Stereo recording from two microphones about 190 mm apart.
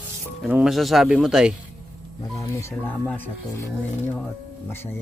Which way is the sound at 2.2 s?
15° left (ahead or behind).